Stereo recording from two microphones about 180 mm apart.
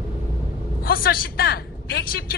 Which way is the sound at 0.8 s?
55° left (ahead or behind).